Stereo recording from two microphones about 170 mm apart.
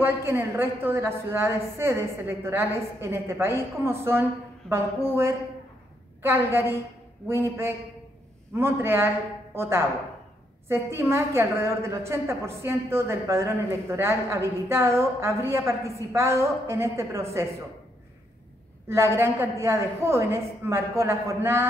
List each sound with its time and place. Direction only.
0.0 s a woman's voice: 15° right (ahead or behind)
18.9 s a woman's voice: 15° right (ahead or behind)